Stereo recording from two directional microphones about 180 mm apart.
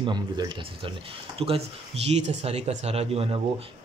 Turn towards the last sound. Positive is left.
turn(degrees=-35)  # may be behind; listen again after turning